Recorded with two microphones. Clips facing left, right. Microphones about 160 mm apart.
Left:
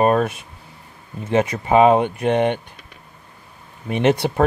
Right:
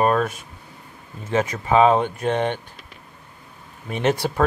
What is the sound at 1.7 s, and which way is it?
Speech, 15° left (ahead or behind).